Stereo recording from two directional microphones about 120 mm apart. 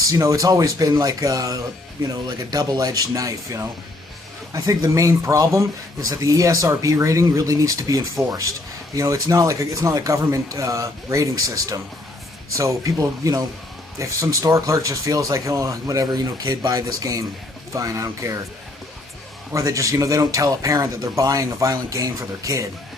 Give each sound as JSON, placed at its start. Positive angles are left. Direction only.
{"t": 0.0, "sound": "speech", "side_deg": -30}
{"t": 19.5, "sound": "speech", "side_deg": -30}